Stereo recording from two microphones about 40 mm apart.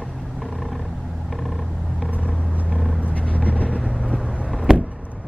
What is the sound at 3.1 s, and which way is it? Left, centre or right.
Vehicle, left.